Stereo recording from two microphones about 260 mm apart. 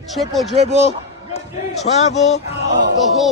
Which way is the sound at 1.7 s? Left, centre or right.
Left.